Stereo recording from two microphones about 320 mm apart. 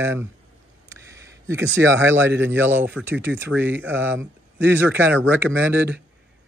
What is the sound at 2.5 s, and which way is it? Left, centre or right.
Speech, centre.